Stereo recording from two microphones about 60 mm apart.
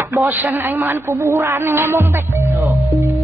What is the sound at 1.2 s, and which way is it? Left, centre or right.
Music, right.